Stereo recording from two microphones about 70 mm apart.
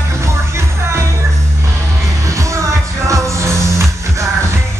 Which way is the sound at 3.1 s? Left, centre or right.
Right.